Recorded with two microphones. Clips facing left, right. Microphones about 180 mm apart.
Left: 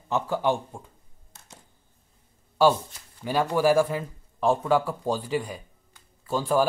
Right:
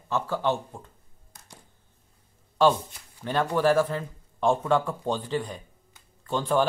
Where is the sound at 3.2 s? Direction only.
10° left (ahead or behind).